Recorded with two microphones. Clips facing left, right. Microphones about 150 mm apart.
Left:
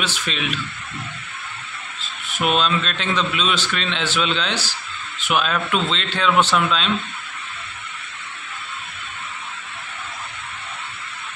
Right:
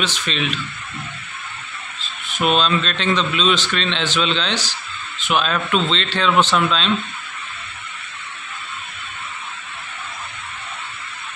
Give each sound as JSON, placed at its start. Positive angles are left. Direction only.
{"t": 0.0, "sound": "a man's voice", "side_deg": 10}
{"t": 2.3, "sound": "a man's voice", "side_deg": 10}